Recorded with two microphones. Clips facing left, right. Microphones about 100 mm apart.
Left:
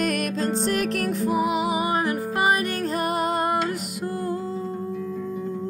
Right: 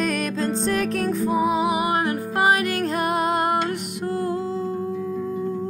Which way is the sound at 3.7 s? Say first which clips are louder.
Right 2 dB; 75° right (ahead or behind).